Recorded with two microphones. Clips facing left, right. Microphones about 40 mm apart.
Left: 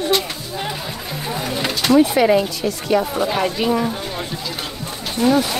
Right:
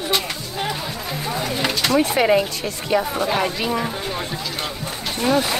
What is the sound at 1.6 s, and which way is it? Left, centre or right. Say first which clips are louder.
Bird: left 4 dB; centre.